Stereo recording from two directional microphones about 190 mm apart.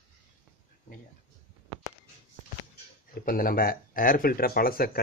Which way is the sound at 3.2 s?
50° left (ahead or behind).